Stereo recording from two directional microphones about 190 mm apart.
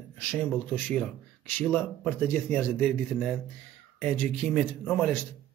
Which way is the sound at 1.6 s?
10° left (ahead or behind).